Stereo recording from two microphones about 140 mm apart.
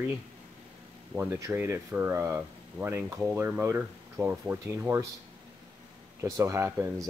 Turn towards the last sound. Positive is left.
turn(degrees=-20)  # may be behind; listen again after turning